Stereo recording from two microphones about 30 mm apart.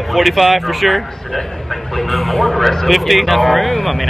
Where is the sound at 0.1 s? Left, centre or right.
Centre.